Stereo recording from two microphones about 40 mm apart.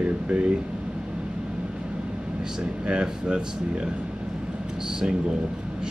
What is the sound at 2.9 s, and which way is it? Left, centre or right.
Speech, right.